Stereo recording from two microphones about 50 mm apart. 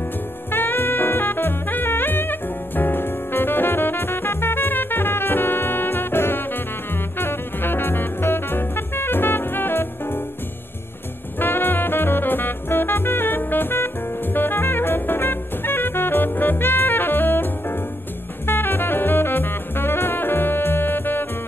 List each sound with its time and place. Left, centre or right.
0.5 s music: left
11.3 s music: left